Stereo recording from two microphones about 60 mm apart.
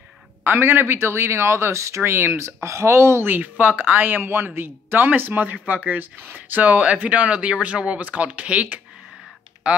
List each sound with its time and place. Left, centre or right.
0.4 s speech: right
3.3 s speech: right; by 9.8 s centre